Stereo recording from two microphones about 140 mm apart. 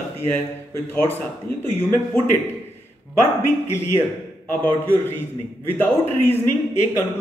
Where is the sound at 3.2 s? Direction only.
15° left (ahead or behind).